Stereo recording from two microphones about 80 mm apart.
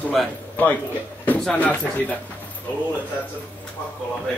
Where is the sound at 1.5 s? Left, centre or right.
Centre.